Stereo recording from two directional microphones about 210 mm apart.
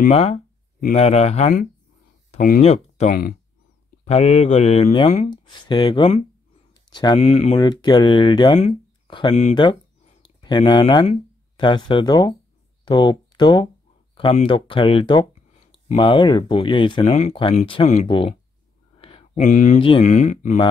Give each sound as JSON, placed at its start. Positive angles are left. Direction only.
{"t": 0.1, "sound": "speech", "side_deg": 30}
{"t": 4.0, "sound": "speech", "side_deg": 30}
{"t": 6.7, "sound": "a sound", "side_deg": 20}
{"t": 7.2, "sound": "speech", "side_deg": 30}
{"t": 18.9, "sound": "a sound", "side_deg": 25}
{"t": 19.8, "sound": "speech", "side_deg": 30}